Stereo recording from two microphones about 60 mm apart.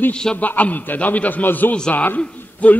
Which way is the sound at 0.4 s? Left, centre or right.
Left.